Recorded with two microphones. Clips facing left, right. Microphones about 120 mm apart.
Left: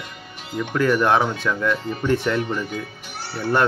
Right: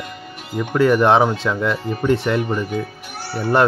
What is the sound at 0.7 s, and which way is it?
Speech, 30° right (ahead or behind).